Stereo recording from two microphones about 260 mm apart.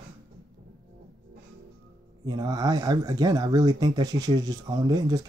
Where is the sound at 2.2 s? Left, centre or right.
Centre.